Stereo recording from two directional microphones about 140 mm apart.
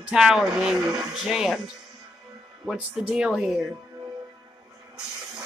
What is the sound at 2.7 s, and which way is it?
Speech, 5° right (ahead or behind).